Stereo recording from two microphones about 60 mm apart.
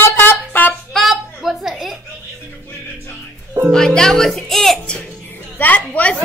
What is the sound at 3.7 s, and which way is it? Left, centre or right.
Music, centre.